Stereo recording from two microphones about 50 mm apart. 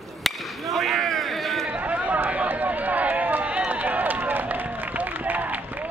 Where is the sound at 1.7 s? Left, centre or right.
Right.